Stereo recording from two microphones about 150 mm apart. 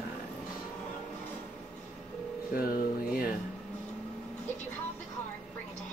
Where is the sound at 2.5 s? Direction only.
75° left (ahead or behind).